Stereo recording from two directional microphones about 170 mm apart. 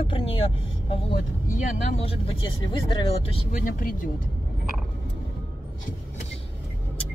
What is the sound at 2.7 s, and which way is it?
Speech, 30° left (ahead or behind).